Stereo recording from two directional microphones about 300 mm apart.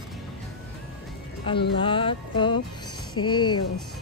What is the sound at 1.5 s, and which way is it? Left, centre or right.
Speech, centre.